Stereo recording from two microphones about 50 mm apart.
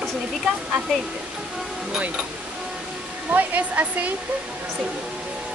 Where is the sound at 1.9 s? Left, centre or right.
Right.